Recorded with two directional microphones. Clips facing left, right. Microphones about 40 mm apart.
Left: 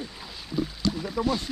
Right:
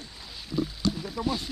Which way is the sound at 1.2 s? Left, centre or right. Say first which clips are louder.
Left 2 dB; centre.